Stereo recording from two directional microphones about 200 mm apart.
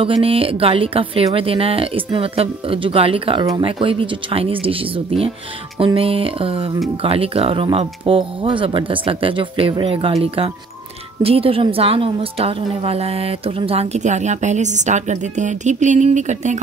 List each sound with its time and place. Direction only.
0.0 s a woman's voice: 30° right (ahead or behind)